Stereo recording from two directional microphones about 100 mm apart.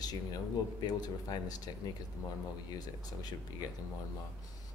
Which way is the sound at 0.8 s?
45° left (ahead or behind).